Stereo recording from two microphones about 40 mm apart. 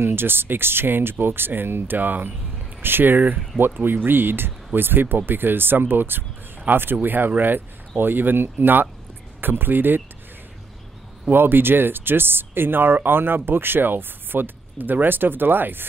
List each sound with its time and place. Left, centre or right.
0.0 s speech: right
2.0 s speech: right
2.8 s speech: right
11.3 s speech: right